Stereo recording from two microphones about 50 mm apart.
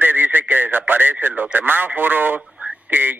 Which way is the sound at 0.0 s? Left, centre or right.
Right.